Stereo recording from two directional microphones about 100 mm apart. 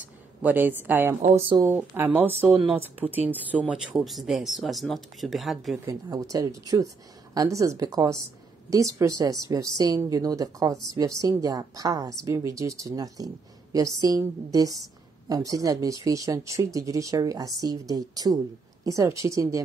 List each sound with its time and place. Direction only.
0.4 s speech: 20° right (ahead or behind); by 5.8 s centre (ahead or behind)
5.9 s a woman's voice: 35° right (ahead or behind)